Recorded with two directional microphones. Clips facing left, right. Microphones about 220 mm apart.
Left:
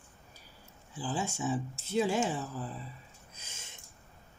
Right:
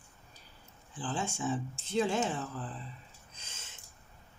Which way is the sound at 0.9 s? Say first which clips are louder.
Left 1 dB; 10° left (ahead or behind).